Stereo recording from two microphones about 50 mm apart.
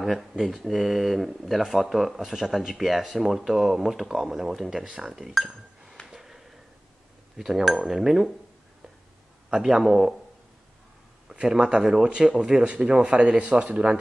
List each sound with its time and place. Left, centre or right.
0.0 s speech: centre
6.0 s a sound: centre
7.3 s speech: centre
9.5 s speech: centre
11.3 s speech: centre
12.6 s speech: right